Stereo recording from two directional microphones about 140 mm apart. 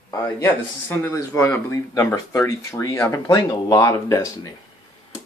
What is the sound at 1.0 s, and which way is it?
Speech, 20° left (ahead or behind).